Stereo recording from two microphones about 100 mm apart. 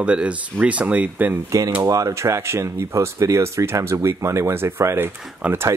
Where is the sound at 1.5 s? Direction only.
35° right (ahead or behind).